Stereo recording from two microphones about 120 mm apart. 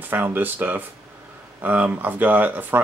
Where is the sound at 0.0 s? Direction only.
15° right (ahead or behind).